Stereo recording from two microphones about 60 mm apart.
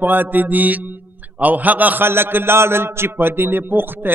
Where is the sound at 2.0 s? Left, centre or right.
Right.